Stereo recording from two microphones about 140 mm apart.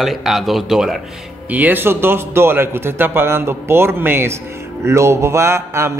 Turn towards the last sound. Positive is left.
turn(degrees=-20)  # may be behind; listen again after turning